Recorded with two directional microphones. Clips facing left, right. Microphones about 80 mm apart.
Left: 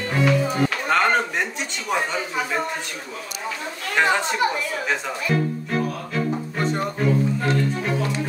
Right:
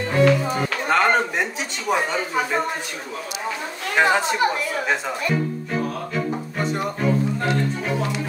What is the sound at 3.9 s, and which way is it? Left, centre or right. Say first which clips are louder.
Speech: right 2 dB; centre.